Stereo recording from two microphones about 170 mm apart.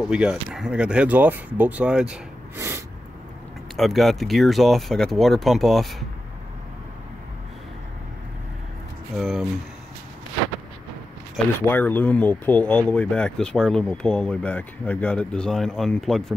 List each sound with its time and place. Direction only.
0.0 s speech: 5° right (ahead or behind)
2.5 s snort: 15° right (ahead or behind)
3.7 s speech: centre (ahead or behind)
9.1 s speech: centre (ahead or behind)
11.6 s speech: 10° left (ahead or behind)